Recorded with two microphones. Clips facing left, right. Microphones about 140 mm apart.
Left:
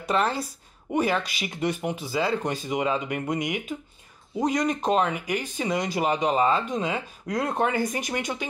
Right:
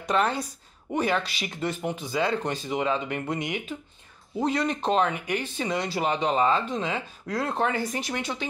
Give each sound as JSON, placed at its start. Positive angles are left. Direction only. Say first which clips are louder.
{"t": 0.0, "sound": "a woman's voice", "louder": "even", "side_deg": 0}